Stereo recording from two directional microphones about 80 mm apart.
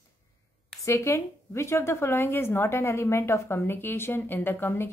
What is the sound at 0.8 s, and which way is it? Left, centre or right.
A woman's voice, left.